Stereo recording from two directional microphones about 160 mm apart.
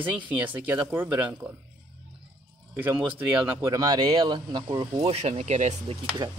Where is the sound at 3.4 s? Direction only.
15° right (ahead or behind).